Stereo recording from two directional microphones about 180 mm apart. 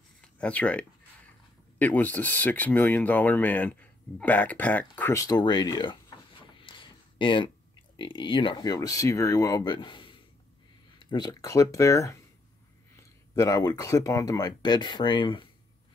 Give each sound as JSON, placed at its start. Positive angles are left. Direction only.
{"t": 0.4, "sound": "speech", "side_deg": 5}